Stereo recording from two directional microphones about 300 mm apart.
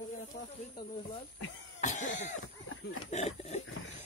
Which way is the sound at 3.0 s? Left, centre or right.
Left.